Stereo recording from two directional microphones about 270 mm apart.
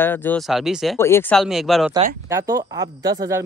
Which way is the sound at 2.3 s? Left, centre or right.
Centre.